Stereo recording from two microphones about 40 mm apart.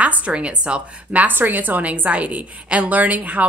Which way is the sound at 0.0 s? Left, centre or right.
Right.